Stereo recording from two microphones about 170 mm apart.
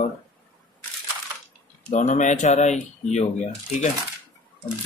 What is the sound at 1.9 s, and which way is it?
Speech, 45° left (ahead or behind).